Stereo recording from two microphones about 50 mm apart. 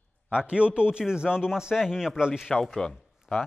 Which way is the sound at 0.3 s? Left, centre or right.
Right.